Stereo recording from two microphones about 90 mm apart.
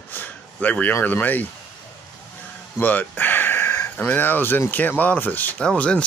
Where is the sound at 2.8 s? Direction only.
20° left (ahead or behind).